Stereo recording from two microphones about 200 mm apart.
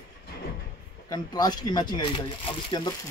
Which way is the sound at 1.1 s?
20° left (ahead or behind).